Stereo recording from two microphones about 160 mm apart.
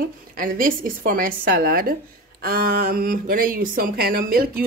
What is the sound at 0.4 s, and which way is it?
A woman's voice, 60° right (ahead or behind).